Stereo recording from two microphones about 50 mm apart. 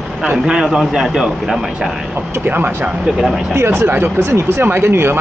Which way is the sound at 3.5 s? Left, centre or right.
Right.